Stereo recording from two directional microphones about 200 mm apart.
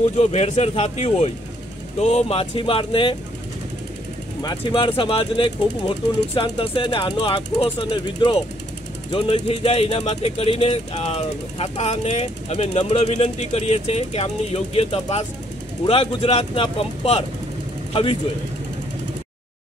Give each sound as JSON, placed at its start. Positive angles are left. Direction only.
{"t": 0.2, "sound": "speech", "side_deg": 35}
{"t": 4.4, "sound": "speech", "side_deg": 20}